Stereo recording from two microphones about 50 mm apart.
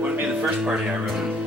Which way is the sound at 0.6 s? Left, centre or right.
Centre.